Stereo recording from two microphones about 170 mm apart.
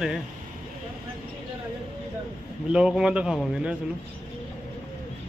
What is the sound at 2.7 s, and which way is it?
Speech, 5° right (ahead or behind).